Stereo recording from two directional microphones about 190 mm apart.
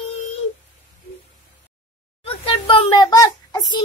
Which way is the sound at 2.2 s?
25° left (ahead or behind).